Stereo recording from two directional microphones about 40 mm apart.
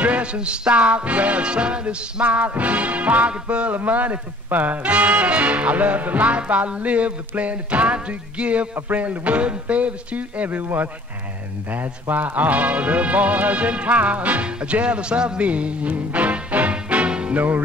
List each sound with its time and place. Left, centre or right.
0.0 s music: right
2.2 s speech: right
14.4 s music: right